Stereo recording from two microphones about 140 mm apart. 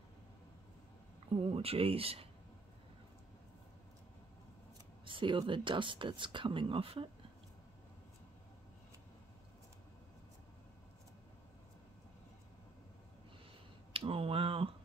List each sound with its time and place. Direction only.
1.4 s speech: 45° right (ahead or behind)
5.0 s speech: 35° right (ahead or behind)
13.9 s a sound: 40° right (ahead or behind)